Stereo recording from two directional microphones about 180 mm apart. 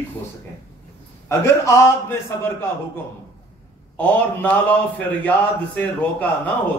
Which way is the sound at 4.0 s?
10° left (ahead or behind).